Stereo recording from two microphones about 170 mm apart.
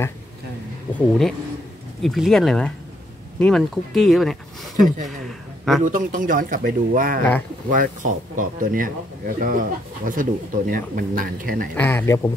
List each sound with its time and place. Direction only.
0.9 s speech: centre (ahead or behind)
5.9 s speech: 50° right (ahead or behind)
11.7 s speech: 10° left (ahead or behind)